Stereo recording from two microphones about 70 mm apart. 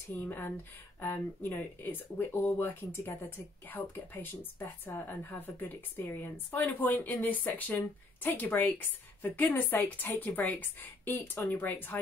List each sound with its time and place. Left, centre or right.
0.2 s speech: left